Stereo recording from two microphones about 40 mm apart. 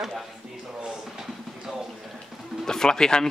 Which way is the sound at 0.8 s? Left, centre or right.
Centre.